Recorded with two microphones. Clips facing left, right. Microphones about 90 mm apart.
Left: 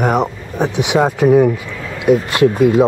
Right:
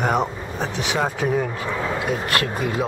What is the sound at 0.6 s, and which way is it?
Speech, 15° left (ahead or behind).